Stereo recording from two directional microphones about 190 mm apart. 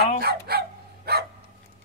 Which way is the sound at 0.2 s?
55° right (ahead or behind).